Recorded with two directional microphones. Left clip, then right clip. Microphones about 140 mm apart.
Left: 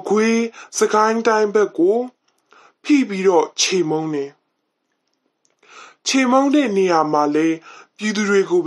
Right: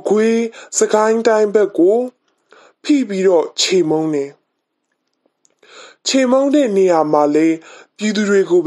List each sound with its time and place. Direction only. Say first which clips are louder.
0.0 s speech: right 3 dB; 35° right (ahead or behind)
5.6 s speech: right 4 dB; 30° right (ahead or behind)